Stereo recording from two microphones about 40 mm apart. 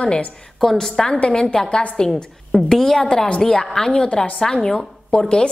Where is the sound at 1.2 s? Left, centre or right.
Left.